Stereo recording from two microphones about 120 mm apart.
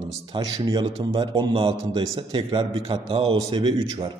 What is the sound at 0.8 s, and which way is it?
A man's voice, 45° right (ahead or behind).